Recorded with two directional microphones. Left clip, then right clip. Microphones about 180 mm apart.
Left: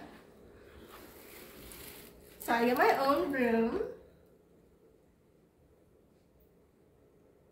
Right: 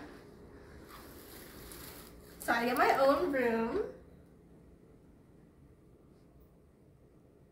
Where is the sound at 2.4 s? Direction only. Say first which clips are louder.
Left 2 dB; centre (ahead or behind).